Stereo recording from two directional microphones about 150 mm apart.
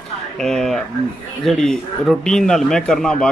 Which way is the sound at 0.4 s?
5° left (ahead or behind).